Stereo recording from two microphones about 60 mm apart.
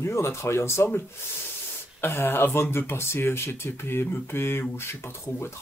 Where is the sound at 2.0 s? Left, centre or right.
Left.